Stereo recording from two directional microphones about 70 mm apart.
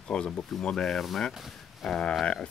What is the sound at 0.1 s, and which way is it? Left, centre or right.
Speech, centre.